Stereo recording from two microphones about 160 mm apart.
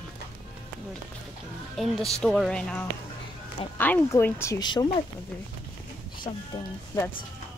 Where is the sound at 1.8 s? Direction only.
Centre (ahead or behind); by 4.8 s 25° left (ahead or behind).